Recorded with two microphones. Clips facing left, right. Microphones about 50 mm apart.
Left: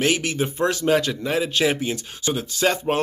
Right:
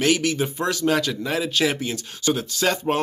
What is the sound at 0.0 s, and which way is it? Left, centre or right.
Speech, left.